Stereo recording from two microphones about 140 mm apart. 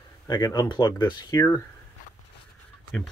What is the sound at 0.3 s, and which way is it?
Speech, 30° left (ahead or behind).